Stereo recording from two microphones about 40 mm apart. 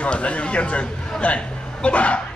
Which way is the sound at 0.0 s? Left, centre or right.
Left.